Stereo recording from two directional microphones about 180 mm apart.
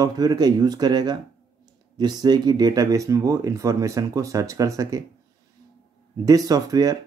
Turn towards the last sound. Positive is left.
turn(degrees=-20)  # may be behind; listen again after turning